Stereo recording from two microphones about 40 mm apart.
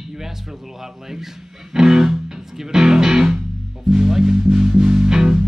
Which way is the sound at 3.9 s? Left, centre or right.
Centre.